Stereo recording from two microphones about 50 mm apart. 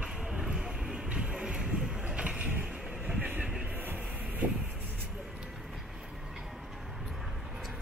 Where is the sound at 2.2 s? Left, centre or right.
Right.